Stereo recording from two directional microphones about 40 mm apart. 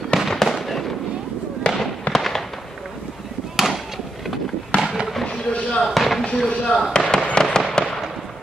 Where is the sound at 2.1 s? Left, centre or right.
Centre.